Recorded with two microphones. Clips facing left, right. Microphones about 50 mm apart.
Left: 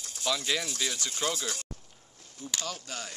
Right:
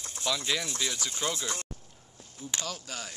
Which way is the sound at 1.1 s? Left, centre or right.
Centre.